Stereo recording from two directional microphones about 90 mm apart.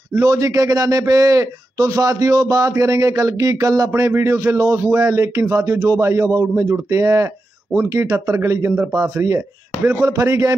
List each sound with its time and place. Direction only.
0.1 s a man's voice: 35° right (ahead or behind)
3.9 s a man's voice: 30° right (ahead or behind)
9.0 s a man's voice: 35° right (ahead or behind)